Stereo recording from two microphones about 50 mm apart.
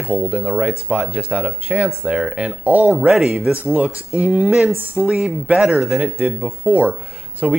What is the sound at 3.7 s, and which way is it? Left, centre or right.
Speech, right.